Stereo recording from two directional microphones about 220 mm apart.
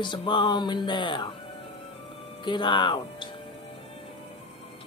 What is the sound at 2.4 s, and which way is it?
Speech, 20° left (ahead or behind).